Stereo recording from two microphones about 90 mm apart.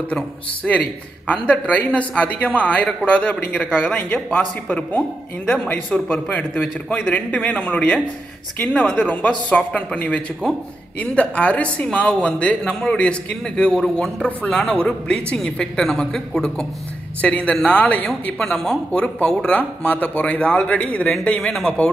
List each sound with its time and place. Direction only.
0.7 s speech: 15° left (ahead or behind)
18.4 s speech: 5° left (ahead or behind)